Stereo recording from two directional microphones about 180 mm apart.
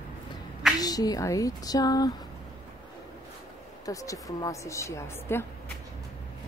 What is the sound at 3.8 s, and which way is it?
Speech, 20° left (ahead or behind).